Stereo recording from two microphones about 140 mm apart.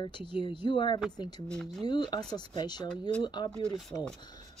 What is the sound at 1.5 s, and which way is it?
Speech, 5° left (ahead or behind).